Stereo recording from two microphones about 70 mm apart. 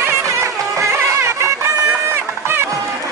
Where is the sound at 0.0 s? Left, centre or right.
Right.